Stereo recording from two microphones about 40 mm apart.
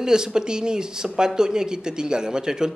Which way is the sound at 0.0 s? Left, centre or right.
Centre.